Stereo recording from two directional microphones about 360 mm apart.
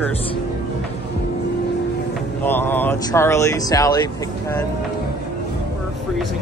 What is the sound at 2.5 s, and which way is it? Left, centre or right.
Speech, centre.